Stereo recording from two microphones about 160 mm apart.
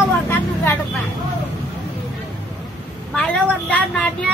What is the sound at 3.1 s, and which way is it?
Speech, 5° left (ahead or behind).